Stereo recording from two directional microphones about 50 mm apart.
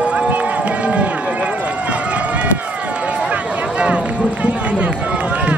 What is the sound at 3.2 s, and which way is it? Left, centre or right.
Run, right.